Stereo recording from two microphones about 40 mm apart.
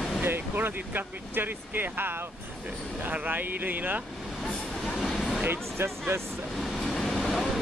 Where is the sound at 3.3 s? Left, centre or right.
Right.